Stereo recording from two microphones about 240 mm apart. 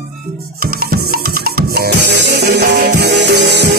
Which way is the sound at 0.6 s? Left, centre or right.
Right.